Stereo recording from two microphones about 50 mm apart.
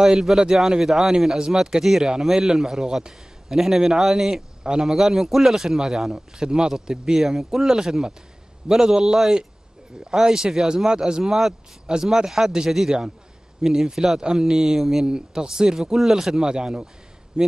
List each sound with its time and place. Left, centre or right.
0.0 s speech: centre
11.2 s speech: centre